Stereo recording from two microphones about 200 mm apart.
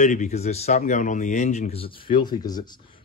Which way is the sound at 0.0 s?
40° left (ahead or behind).